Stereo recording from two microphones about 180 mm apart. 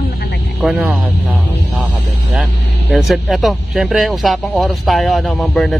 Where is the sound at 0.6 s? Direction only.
5° right (ahead or behind).